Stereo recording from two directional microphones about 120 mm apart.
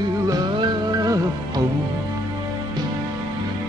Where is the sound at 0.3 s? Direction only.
30° right (ahead or behind).